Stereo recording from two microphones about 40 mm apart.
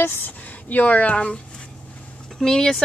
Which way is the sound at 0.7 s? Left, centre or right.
Left.